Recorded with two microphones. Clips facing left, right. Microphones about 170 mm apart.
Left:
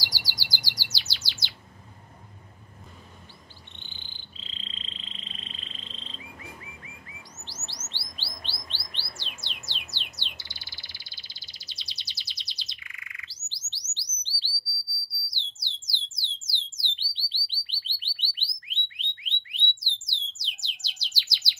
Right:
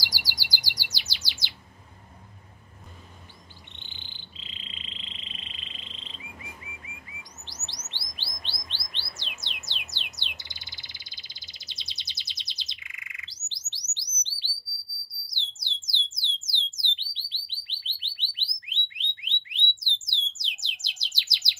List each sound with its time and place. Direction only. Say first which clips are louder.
0.0 s chirp: even; 10° right (ahead or behind)
3.8 s frog: even; 20° right (ahead or behind)
7.4 s chirp: left 3 dB; 15° right (ahead or behind)
15.2 s a sound: right 4 dB; 20° right (ahead or behind)
17.1 s alarm: left 4 dB; 20° right (ahead or behind)
20.3 s bird: right 1 dB; 20° right (ahead or behind)